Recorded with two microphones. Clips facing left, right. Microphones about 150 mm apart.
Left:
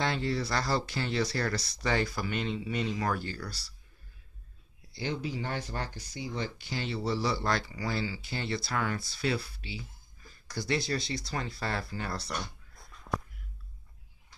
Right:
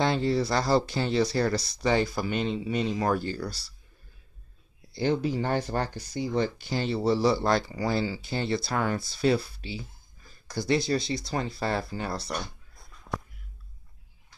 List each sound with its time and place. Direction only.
0.0 s speech: 30° right (ahead or behind)
4.9 s speech: 45° right (ahead or behind); by 12.4 s 20° right (ahead or behind)